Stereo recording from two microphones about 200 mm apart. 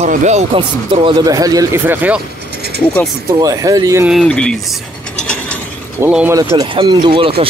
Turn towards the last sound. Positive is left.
turn(degrees=-25)  # may be behind; listen again after turning